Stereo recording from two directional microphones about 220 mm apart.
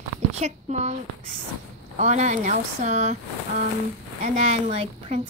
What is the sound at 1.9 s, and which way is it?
Speech, 30° right (ahead or behind).